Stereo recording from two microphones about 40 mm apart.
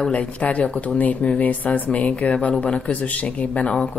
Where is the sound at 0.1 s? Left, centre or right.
Left.